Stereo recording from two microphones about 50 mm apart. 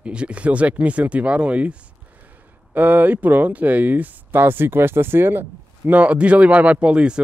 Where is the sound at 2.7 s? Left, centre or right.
Right.